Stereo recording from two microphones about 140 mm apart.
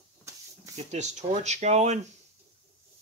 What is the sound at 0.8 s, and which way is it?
Speech, 55° right (ahead or behind).